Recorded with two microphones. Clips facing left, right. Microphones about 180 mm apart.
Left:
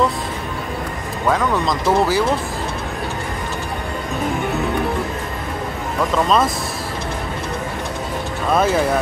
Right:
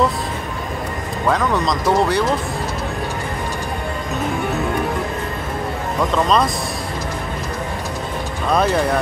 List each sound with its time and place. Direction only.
1.2 s speech: centre (ahead or behind)
6.1 s speech: 5° left (ahead or behind)
8.5 s speech: 5° left (ahead or behind)